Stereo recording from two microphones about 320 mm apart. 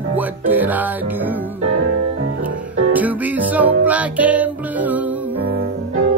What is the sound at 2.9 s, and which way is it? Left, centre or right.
Music, centre.